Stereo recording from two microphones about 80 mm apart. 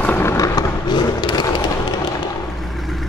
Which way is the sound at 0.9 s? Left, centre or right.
Left.